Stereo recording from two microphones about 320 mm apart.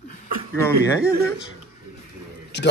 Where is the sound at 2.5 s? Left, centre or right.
Left.